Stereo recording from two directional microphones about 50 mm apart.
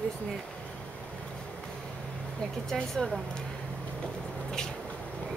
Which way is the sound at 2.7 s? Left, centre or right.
Centre.